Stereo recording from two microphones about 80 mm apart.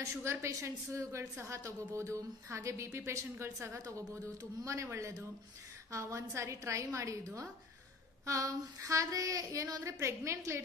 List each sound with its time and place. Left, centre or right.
0.0 s a woman's voice: right